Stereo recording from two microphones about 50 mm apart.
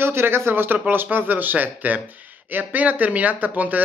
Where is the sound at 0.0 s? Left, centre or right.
Right.